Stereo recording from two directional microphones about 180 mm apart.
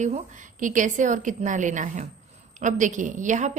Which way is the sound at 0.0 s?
45° right (ahead or behind).